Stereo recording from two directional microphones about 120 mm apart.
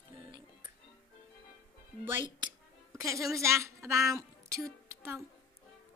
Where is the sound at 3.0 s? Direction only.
25° right (ahead or behind).